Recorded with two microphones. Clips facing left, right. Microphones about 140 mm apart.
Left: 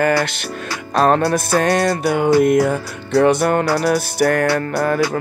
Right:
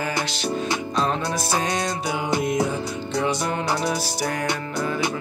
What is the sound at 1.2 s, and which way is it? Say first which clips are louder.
Music: left 8 dB; 65° left (ahead or behind).